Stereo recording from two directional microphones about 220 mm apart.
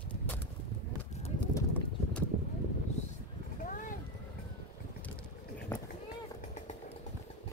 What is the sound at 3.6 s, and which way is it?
Boat, 40° left (ahead or behind).